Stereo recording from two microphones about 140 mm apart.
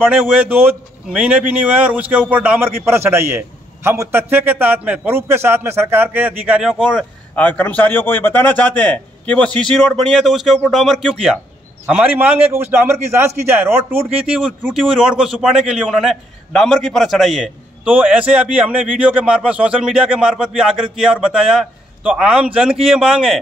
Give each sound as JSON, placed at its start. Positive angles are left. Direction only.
{"t": 0.0, "sound": "a man's voice", "side_deg": -10}
{"t": 7.3, "sound": "a man's voice", "side_deg": 10}
{"t": 11.8, "sound": "a man's voice", "side_deg": -10}